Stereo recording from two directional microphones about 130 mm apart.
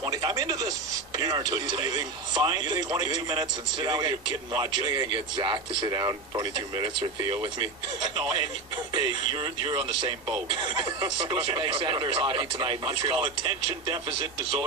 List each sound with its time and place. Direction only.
0.0 s speech: 30° right (ahead or behind)